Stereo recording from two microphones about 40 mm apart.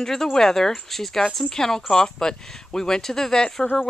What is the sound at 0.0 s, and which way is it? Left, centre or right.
Speech, centre.